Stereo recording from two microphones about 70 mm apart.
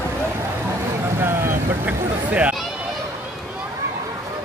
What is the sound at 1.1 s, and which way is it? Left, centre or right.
Vehicle, right.